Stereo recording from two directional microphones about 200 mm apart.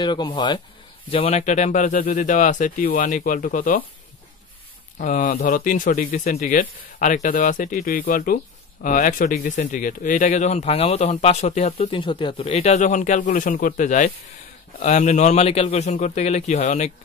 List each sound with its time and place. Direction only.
0.0 s speech: 20° left (ahead or behind); by 3.8 s 40° left (ahead or behind)
4.9 s speech: 40° left (ahead or behind)